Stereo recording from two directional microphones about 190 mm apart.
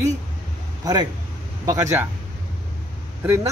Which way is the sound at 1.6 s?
15° right (ahead or behind).